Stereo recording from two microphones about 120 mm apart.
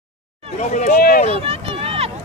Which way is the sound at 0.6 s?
75° left (ahead or behind).